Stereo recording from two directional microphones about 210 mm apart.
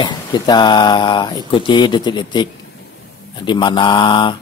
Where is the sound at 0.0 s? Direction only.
20° left (ahead or behind).